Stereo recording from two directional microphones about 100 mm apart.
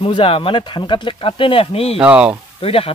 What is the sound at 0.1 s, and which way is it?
Speech, 60° left (ahead or behind).